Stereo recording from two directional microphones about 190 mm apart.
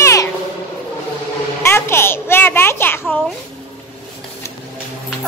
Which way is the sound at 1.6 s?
15° left (ahead or behind).